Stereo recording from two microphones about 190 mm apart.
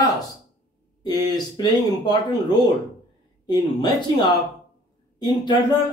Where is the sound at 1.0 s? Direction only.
20° left (ahead or behind).